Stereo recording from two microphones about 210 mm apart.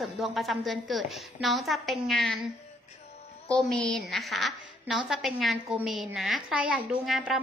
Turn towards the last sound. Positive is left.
turn(degrees=0)  # may be behind; listen again after turning